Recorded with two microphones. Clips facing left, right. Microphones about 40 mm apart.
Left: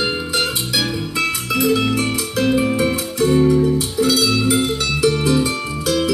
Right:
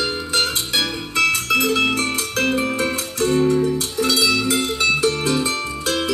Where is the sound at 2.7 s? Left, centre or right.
Left.